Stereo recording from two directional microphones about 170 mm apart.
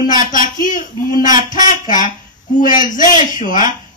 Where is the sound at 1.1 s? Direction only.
25° right (ahead or behind).